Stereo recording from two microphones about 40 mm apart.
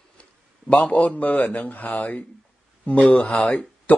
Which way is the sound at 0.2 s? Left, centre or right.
Left.